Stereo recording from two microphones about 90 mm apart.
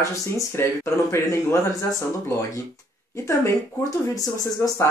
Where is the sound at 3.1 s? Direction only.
35° left (ahead or behind).